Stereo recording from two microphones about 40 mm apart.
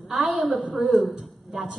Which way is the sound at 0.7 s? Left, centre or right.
Centre.